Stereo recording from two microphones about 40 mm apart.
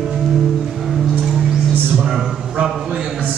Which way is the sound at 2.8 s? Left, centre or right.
Centre.